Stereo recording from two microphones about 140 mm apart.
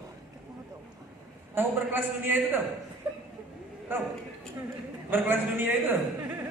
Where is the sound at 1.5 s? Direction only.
15° right (ahead or behind).